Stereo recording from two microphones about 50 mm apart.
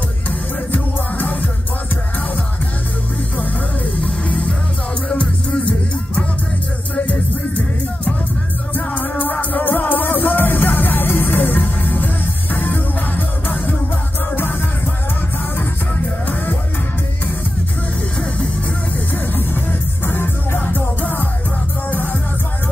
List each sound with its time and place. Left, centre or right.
0.7 s music: left
7.1 s music: left
21.0 s music: left